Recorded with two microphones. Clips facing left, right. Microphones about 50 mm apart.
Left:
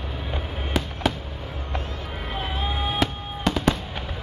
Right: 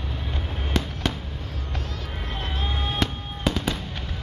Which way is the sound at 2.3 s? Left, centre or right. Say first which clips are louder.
Left 3 dB; centre.